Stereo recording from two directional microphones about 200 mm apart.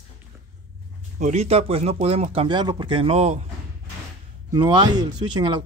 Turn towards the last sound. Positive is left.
turn(degrees=-25)  # may be behind; listen again after turning